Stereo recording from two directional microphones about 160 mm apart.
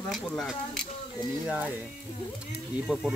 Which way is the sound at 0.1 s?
Centre (ahead or behind).